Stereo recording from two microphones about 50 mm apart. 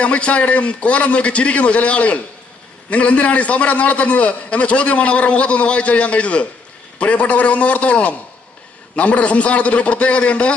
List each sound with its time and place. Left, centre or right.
0.0 s a man's voice: left